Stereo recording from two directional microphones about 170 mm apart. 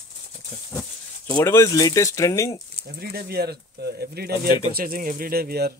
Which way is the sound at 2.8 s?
70° right (ahead or behind).